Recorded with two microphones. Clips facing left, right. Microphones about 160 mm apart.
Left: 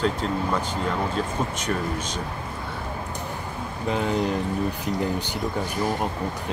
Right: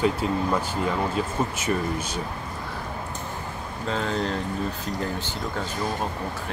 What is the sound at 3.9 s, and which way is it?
Speech, 15° left (ahead or behind).